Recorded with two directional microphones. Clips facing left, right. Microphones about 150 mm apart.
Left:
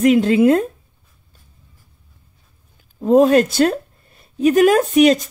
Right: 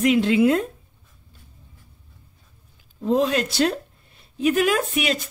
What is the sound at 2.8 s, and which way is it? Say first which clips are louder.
A woman's voice: left 8 dB; 45° left (ahead or behind).